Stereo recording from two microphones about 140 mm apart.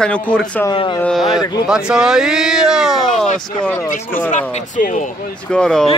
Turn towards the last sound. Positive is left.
turn(degrees=5)  # may be behind; listen again after turning